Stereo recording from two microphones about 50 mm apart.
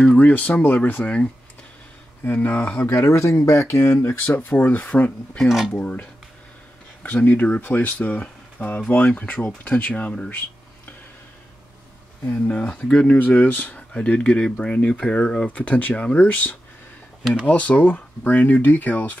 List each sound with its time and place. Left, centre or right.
0.2 s speech: left
2.2 s speech: left
2.9 s speech: left
4.6 s speech: left
12.4 s speech: left
13.2 s speech: left